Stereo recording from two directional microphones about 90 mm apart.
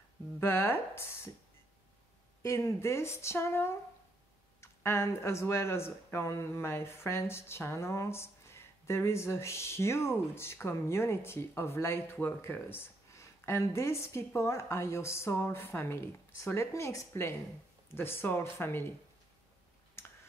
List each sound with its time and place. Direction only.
0.4 s speech: 25° left (ahead or behind)
2.4 s speech: 30° left (ahead or behind)
20.0 s a sound: 30° left (ahead or behind)